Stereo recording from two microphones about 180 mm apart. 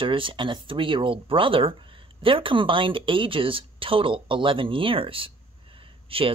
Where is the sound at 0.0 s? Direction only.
30° right (ahead or behind).